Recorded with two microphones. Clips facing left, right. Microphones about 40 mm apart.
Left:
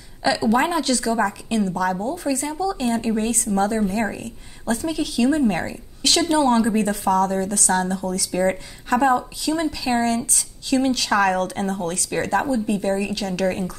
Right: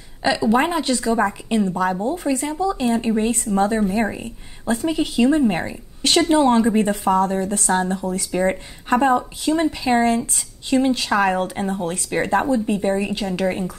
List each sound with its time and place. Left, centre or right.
0.2 s speech: right